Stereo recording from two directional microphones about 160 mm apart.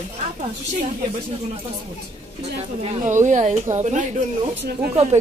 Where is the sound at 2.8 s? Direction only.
50° right (ahead or behind).